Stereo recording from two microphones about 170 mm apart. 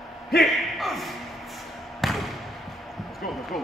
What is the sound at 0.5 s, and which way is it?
Speech, centre (ahead or behind).